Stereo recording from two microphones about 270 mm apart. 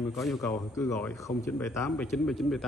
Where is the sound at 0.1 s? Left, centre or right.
Centre.